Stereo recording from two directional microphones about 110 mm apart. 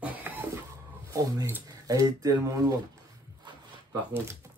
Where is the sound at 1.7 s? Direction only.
35° right (ahead or behind).